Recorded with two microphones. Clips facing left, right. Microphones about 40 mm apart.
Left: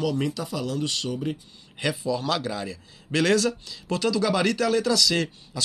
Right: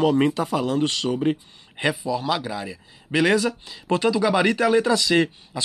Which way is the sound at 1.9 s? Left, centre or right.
Centre.